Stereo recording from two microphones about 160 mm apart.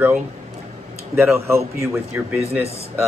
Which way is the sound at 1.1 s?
15° right (ahead or behind).